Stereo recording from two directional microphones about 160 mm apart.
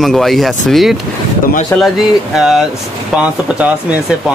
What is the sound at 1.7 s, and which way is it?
Speech, 10° left (ahead or behind).